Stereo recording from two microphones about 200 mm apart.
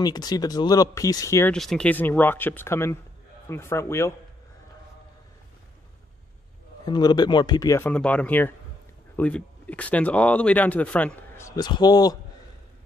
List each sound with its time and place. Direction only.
0.0 s speech: 20° left (ahead or behind)
1.5 s speech: 5° left (ahead or behind)
6.9 s speech: 20° left (ahead or behind)